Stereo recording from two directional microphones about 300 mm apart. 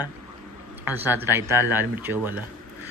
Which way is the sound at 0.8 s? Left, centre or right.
Centre.